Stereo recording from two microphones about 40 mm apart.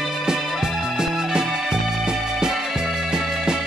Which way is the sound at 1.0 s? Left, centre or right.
Centre.